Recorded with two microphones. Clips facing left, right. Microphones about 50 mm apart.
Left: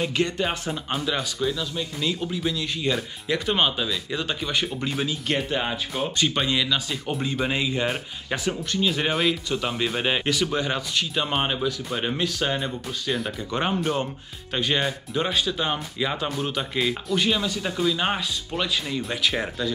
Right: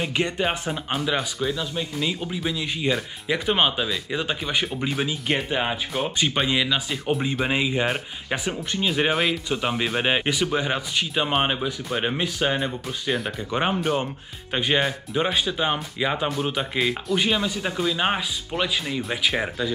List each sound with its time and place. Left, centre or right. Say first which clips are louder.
0.0 s speech: even; centre
9.1 s speech: even; centre
9.5 s speech: right 1 dB; centre
13.4 s speech: right 1 dB; centre